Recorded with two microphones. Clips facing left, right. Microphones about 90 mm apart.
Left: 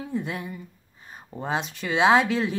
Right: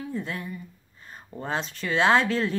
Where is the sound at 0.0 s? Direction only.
15° left (ahead or behind).